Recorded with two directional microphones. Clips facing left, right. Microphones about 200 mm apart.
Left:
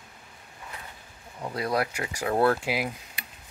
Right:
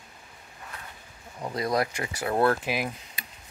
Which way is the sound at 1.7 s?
10° left (ahead or behind).